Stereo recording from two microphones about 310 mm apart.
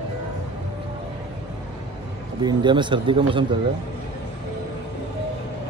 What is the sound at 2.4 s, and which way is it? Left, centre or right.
Speech, centre.